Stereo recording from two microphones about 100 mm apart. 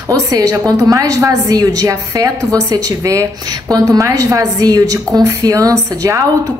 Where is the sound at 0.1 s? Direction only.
40° right (ahead or behind).